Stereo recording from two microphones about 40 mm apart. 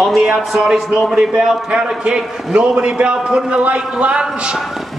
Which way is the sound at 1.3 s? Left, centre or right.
Centre.